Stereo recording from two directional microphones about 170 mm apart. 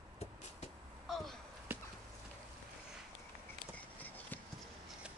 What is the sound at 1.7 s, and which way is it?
Clip-clop, 10° right (ahead or behind).